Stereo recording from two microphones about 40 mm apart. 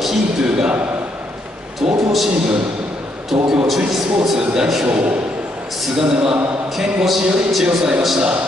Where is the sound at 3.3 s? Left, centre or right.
Centre.